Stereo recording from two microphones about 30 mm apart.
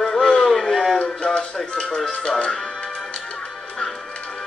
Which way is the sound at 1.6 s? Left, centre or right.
Left.